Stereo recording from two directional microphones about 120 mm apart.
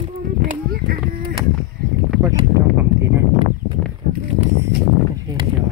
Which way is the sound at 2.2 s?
25° right (ahead or behind).